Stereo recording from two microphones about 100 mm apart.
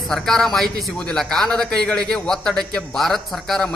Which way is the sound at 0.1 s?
5° left (ahead or behind).